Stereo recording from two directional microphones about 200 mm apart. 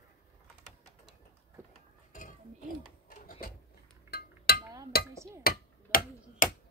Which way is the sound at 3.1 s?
45° left (ahead or behind).